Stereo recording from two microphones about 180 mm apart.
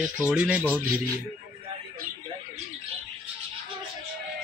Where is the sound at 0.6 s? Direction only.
5° left (ahead or behind).